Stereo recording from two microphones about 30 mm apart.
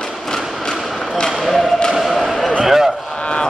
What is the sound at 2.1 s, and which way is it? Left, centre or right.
Basketball bounce, centre.